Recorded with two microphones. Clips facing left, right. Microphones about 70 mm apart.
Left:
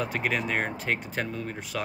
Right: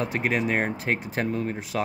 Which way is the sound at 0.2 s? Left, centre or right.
Right.